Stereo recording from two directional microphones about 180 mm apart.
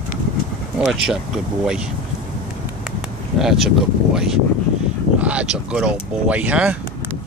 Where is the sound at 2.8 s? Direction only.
Centre (ahead or behind).